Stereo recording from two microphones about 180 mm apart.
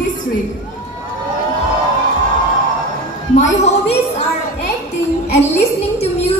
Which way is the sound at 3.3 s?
40° left (ahead or behind).